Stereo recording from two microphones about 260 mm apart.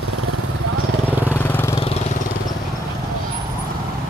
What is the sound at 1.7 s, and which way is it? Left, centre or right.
Vehicle, left.